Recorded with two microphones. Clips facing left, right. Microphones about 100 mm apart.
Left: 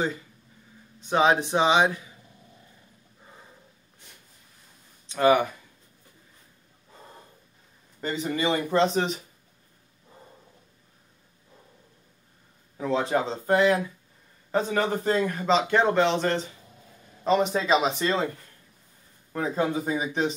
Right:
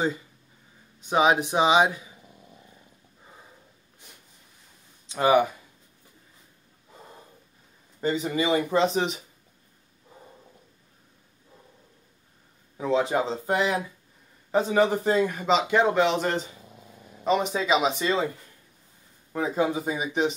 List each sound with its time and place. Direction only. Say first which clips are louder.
1.0 s a man's voice: even; 15° right (ahead or behind)
5.1 s a man's voice: even; 15° right (ahead or behind)
8.0 s a man's voice: right 2 dB; 15° right (ahead or behind)
12.7 s a man's voice: right 1 dB; 10° right (ahead or behind)
17.2 s speech: left 1 dB; centre (ahead or behind)
19.3 s a man's voice: right 1 dB; 10° right (ahead or behind)